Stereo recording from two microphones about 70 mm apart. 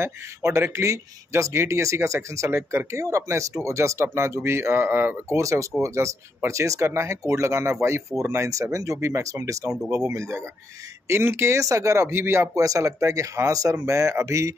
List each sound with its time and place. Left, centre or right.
0.0 s speech: right
5.4 s speech: right
12.5 s speech: right